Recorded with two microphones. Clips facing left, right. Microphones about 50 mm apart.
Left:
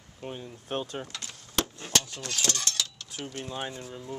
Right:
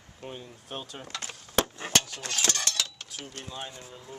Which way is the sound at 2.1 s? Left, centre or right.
Right.